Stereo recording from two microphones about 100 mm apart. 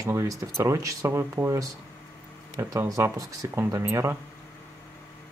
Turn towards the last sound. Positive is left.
turn(degrees=-30)  # may be behind; listen again after turning